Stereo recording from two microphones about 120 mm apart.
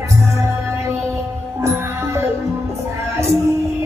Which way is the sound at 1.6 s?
20° right (ahead or behind).